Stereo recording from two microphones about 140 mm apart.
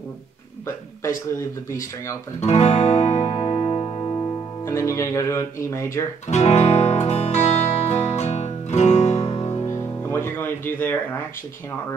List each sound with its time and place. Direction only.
2.4 s music: 50° left (ahead or behind); by 5.9 s 20° left (ahead or behind)
6.2 s music: 55° left (ahead or behind)
9.7 s music: 15° left (ahead or behind)